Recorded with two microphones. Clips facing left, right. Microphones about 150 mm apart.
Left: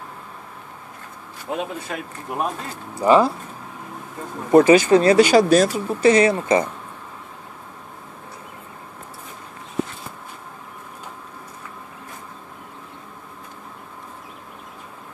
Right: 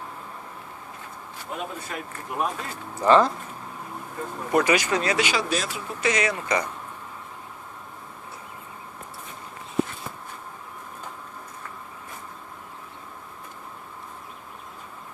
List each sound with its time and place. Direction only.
1.5 s speech: 90° left
2.9 s speech: 10° left (ahead or behind)
4.5 s speech: 30° left (ahead or behind)